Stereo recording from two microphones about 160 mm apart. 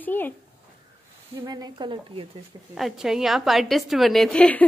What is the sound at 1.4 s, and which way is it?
Speech, 25° right (ahead or behind).